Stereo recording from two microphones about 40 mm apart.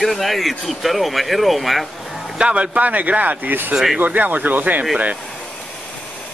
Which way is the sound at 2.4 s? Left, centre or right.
Right.